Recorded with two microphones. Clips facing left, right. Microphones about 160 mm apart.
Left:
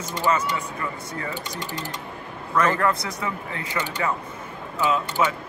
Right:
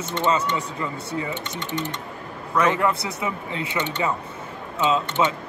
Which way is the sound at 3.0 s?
25° right (ahead or behind).